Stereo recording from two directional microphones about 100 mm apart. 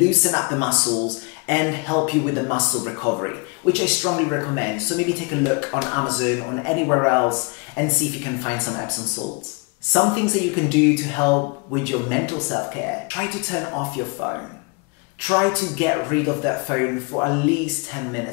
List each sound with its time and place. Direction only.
0.0 s speech: 10° left (ahead or behind)
15.2 s speech: 15° left (ahead or behind)